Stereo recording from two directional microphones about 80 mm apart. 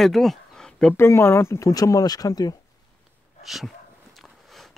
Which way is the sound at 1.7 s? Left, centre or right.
Left.